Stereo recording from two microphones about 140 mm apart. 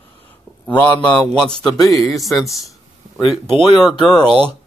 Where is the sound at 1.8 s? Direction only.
Centre (ahead or behind).